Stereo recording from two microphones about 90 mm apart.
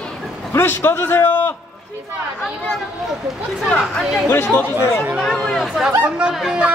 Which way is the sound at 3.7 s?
10° left (ahead or behind).